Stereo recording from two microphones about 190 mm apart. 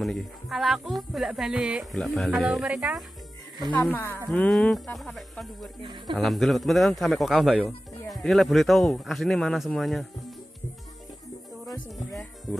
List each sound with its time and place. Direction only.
0.0 s speech: centre (ahead or behind)
3.7 s speech: 10° left (ahead or behind)
5.8 s speech: 25° right (ahead or behind)
6.1 s speech: centre (ahead or behind)